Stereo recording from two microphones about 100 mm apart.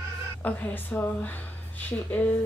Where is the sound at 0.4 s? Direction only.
15° left (ahead or behind).